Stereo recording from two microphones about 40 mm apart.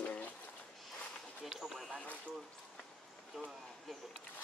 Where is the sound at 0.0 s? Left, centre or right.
Left.